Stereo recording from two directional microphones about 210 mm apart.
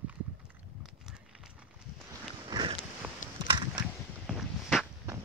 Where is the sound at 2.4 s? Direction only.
20° right (ahead or behind).